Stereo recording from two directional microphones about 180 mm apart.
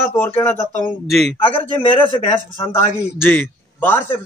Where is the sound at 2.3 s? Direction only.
10° left (ahead or behind).